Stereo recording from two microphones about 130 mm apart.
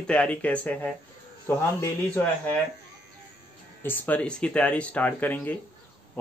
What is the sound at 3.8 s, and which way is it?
Speech, 15° left (ahead or behind).